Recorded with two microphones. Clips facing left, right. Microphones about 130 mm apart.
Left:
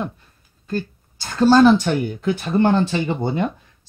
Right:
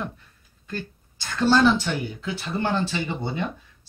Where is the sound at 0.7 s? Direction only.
40° left (ahead or behind).